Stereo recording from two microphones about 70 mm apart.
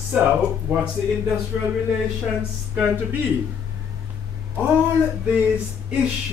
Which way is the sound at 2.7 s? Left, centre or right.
Centre.